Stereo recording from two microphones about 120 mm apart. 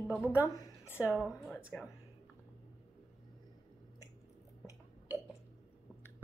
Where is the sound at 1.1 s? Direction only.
10° right (ahead or behind).